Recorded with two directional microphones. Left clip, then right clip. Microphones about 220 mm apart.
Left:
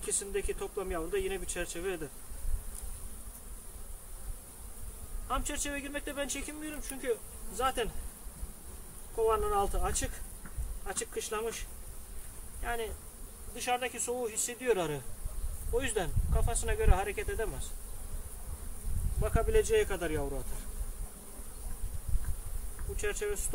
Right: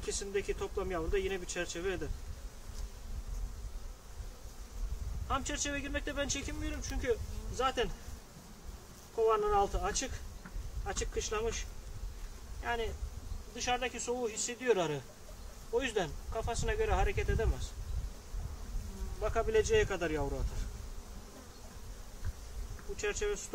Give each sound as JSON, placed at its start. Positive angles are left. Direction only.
{"t": 0.0, "sound": "speech", "side_deg": 0}
{"t": 5.3, "sound": "speech", "side_deg": 5}
{"t": 9.1, "sound": "speech", "side_deg": 5}
{"t": 12.6, "sound": "speech", "side_deg": 5}
{"t": 19.2, "sound": "speech", "side_deg": 0}
{"t": 22.9, "sound": "speech", "side_deg": 0}